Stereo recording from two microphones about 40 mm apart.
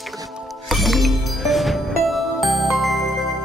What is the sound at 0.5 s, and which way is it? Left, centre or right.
Music, centre.